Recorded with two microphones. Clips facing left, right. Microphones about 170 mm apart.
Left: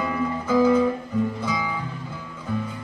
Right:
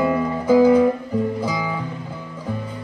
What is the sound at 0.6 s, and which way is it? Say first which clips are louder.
Guitar: right 4 dB; 35° right (ahead or behind).